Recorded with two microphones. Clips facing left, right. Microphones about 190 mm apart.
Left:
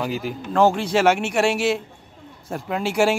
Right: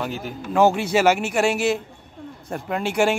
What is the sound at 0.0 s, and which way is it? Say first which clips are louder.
Speech: left 3 dB; 5° left (ahead or behind).